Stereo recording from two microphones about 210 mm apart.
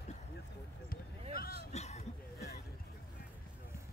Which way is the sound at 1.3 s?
45° left (ahead or behind).